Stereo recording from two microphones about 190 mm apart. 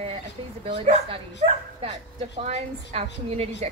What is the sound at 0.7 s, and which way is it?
Speech, 30° right (ahead or behind).